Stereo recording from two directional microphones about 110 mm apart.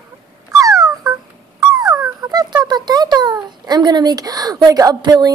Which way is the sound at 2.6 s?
40° right (ahead or behind).